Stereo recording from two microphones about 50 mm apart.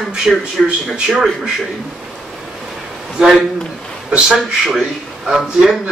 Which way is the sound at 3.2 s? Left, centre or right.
Centre.